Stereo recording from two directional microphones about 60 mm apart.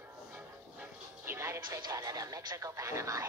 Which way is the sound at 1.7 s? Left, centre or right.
Right.